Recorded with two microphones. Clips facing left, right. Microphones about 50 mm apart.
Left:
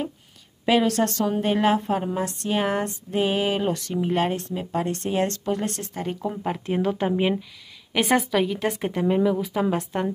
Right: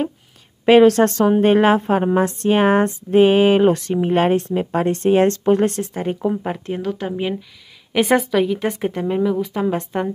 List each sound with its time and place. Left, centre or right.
0.7 s speech: right
5.8 s speech: right
6.6 s a woman's voice: centre
7.9 s a woman's voice: centre